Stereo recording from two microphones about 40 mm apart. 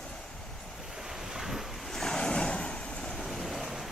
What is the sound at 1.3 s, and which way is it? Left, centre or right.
Waves, centre.